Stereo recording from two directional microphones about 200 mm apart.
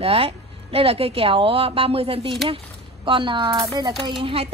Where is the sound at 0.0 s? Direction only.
30° right (ahead or behind).